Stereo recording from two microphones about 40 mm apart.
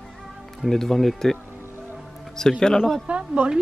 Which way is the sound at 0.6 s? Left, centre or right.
Centre.